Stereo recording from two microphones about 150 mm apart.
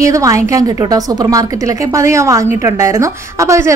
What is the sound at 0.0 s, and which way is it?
A woman's voice, 20° right (ahead or behind).